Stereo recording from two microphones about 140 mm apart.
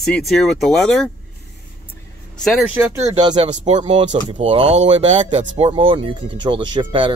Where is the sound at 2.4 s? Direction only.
Centre (ahead or behind).